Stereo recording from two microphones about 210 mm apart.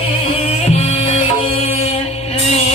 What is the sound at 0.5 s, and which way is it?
Music, 30° left (ahead or behind).